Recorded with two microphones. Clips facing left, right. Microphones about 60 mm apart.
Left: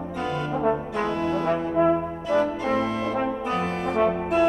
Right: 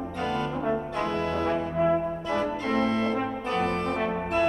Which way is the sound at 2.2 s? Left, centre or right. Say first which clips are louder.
Left 5 dB; centre.